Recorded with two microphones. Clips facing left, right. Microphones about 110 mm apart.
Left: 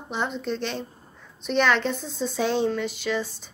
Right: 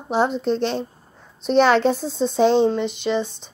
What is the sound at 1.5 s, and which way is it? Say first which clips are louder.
A woman's voice: right 7 dB; 35° right (ahead or behind).